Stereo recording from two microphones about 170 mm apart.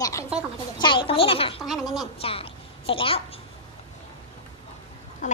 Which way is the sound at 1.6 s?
Centre (ahead or behind).